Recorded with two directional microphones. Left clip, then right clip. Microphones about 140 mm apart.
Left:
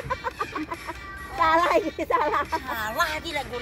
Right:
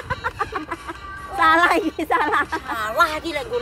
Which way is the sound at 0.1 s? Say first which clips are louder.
Right 5 dB; 15° right (ahead or behind).